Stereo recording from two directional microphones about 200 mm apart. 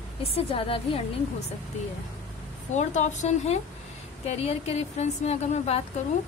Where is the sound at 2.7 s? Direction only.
35° left (ahead or behind).